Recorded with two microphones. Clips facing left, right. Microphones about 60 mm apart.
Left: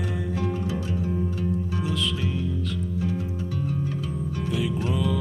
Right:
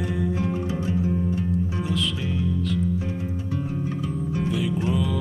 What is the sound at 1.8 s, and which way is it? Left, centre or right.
Music, centre.